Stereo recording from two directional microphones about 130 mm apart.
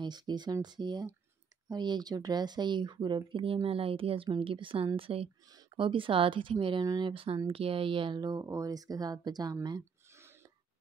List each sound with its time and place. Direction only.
0.0 s speech: 35° right (ahead or behind)
5.5 s a sound: 30° right (ahead or behind)
5.8 s speech: 40° right (ahead or behind)